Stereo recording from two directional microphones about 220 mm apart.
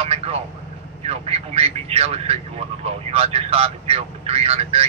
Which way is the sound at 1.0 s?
25° right (ahead or behind).